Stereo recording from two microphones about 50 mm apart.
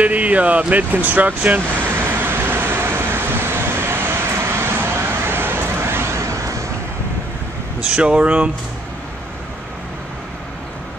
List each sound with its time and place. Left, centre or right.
0.0 s speech: right
1.8 s vehicle: right
7.9 s speech: right